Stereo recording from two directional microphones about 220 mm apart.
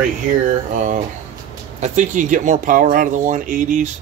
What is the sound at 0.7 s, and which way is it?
Speech, 35° right (ahead or behind).